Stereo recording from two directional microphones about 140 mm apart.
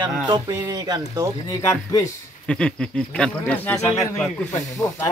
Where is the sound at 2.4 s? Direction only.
5° left (ahead or behind).